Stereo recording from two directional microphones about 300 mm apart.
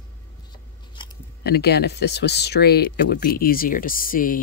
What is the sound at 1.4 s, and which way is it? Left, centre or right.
Speech, left.